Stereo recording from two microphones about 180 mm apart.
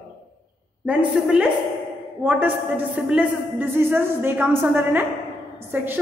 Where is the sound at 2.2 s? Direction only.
10° right (ahead or behind).